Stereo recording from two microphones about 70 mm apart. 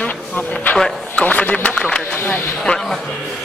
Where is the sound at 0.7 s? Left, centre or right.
Centre.